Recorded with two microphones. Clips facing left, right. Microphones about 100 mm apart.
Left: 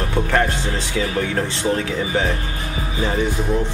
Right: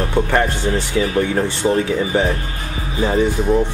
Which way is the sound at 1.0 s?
10° right (ahead or behind).